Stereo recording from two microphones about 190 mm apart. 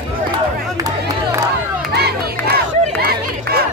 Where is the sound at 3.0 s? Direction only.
55° right (ahead or behind).